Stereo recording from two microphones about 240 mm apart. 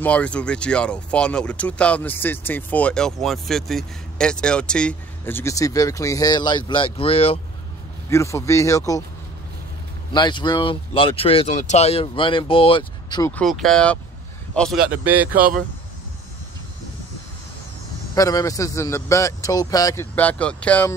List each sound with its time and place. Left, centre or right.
0.0 s speech: centre; by 7.3 s left
8.1 s a man's voice: centre
10.1 s speech: centre
13.3 s speech: centre
15.3 s speech: right
18.1 s a man's voice: centre